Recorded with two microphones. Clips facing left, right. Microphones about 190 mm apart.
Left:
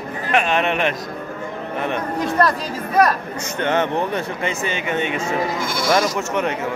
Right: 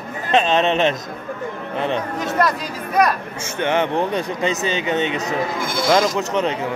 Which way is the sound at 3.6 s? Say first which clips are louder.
Right 1 dB; 15° right (ahead or behind).